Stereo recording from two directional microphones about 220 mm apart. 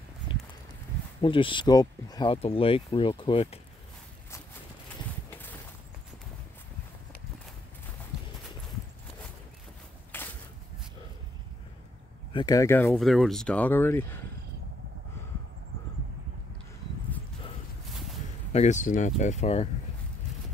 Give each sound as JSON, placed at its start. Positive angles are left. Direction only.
{"t": 1.2, "sound": "speech", "side_deg": 25}
{"t": 5.3, "sound": "a sound", "side_deg": 10}
{"t": 10.1, "sound": "walk", "side_deg": 10}
{"t": 12.3, "sound": "speech", "side_deg": 20}
{"t": 18.5, "sound": "speech", "side_deg": 30}